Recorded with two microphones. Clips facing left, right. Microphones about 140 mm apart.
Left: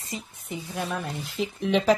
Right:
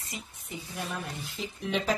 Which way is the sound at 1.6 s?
80° left.